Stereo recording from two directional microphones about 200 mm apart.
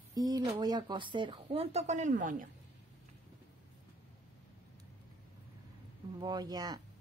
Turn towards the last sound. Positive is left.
turn(degrees=-20)  # may be behind; listen again after turning